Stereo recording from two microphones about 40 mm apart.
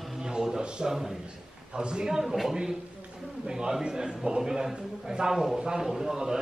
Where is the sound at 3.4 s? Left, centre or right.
Right.